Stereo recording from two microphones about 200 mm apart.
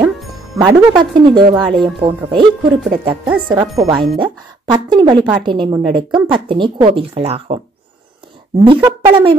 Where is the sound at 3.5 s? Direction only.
20° right (ahead or behind).